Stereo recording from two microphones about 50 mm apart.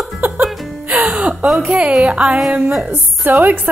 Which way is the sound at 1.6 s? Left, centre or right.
Right.